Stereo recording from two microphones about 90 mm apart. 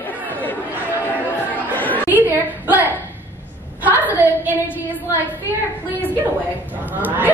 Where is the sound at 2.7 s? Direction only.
20° right (ahead or behind).